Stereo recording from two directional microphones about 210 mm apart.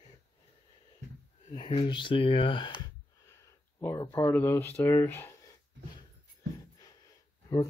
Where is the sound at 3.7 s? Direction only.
15° left (ahead or behind).